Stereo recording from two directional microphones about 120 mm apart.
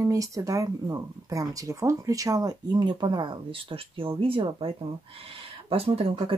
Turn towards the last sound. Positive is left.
turn(degrees=-50)  # may be behind; listen again after turning